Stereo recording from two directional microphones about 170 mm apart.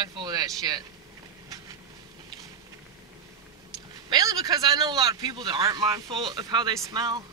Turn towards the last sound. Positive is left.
turn(degrees=-20)  # may be behind; listen again after turning